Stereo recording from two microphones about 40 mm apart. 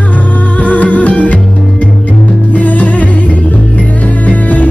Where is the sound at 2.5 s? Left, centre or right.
Left.